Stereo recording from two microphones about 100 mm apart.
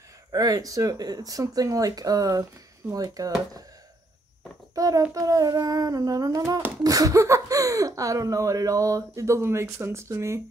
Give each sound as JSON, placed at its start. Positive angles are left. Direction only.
{"t": 0.3, "sound": "speech", "side_deg": -40}
{"t": 4.7, "sound": "speech", "side_deg": -35}